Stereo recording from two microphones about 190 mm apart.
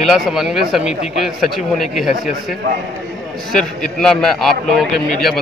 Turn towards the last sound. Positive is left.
turn(degrees=0)  # may be behind; listen again after turning